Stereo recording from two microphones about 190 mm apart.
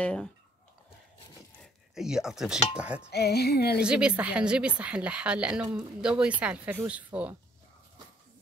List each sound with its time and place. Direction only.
0.0 s stir: 5° left (ahead or behind)
1.6 s speech: centre (ahead or behind)
2.7 s stir: 5° right (ahead or behind)
3.1 s music: 60° left (ahead or behind)
3.8 s a woman's voice: 5° right (ahead or behind)